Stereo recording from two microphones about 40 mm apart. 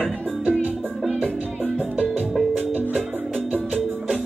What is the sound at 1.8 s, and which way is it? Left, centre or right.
Music, right.